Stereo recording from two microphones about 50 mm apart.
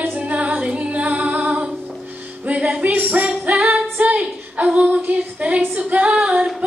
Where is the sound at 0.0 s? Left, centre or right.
Right.